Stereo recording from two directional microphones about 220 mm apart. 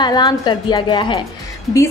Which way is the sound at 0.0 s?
20° left (ahead or behind).